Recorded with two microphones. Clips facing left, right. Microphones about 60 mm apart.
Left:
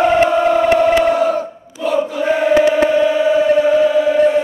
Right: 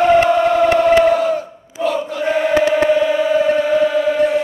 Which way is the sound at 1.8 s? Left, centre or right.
Right.